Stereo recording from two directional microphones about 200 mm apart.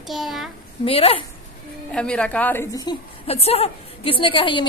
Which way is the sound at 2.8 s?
30° left (ahead or behind).